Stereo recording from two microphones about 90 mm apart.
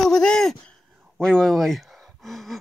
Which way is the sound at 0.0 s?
5° left (ahead or behind).